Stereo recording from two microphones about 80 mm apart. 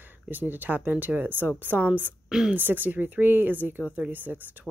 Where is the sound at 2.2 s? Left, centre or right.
Centre.